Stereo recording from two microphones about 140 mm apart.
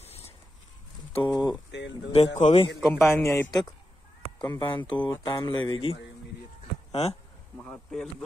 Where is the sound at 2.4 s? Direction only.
35° left (ahead or behind).